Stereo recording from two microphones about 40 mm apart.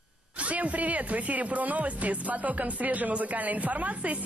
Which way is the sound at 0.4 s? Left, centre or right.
Right.